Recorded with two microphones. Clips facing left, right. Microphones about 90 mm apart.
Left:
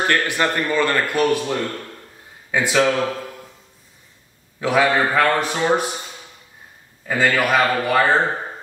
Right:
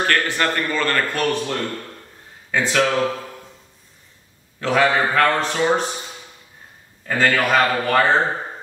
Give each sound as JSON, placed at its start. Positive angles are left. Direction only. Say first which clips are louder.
{"t": 0.0, "sound": "a man's voice", "louder": "left 1 dB", "side_deg": 15}
{"t": 4.6, "sound": "a man's voice", "louder": "even", "side_deg": 10}
{"t": 7.1, "sound": "a man's voice", "louder": "even", "side_deg": 5}